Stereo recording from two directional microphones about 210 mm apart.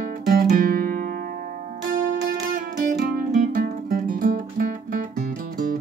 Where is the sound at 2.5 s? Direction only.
40° right (ahead or behind).